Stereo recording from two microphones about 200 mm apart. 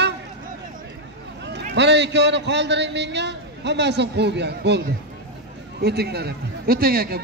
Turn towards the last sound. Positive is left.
turn(degrees=-50)  # may be behind; listen again after turning